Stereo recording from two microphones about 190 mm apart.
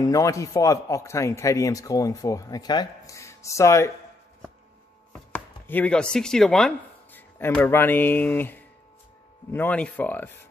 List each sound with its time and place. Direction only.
0.0 s a man's voice: 15° left (ahead or behind)
5.3 s a man's voice: 10° left (ahead or behind)